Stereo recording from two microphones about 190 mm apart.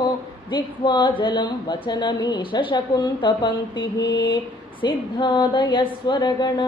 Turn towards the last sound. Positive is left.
turn(degrees=20)  # may be behind; listen again after turning